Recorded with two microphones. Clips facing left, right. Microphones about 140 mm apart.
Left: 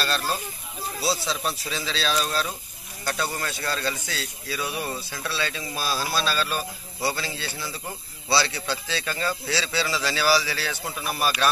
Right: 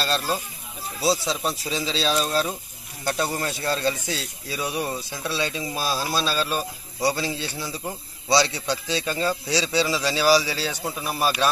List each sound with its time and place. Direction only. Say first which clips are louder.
0.0 s a man's voice: right 2 dB; 25° right (ahead or behind)